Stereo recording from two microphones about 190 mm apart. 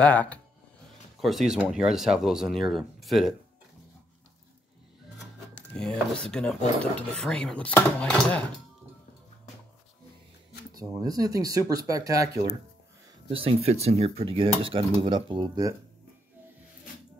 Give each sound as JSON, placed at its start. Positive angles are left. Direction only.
{"t": 0.0, "sound": "speech", "side_deg": 5}
{"t": 5.2, "sound": "rub", "side_deg": 5}
{"t": 6.8, "sound": "speech", "side_deg": 5}
{"t": 10.7, "sound": "dishes", "side_deg": -20}
{"t": 13.3, "sound": "dishes", "side_deg": -30}